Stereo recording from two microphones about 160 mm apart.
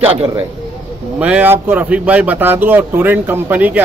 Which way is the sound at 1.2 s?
10° right (ahead or behind).